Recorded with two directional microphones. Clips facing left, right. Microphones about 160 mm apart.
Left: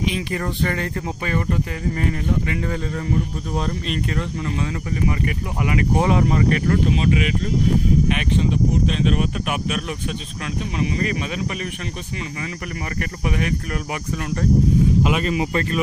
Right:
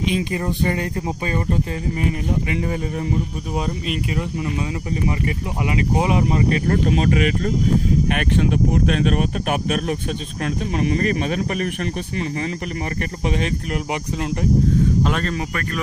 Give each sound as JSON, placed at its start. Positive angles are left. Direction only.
{"t": 0.1, "sound": "speech", "side_deg": -20}
{"t": 2.0, "sound": "speech", "side_deg": -15}
{"t": 5.8, "sound": "speech", "side_deg": -15}
{"t": 6.7, "sound": "speech", "side_deg": -45}
{"t": 15.0, "sound": "speech", "side_deg": 10}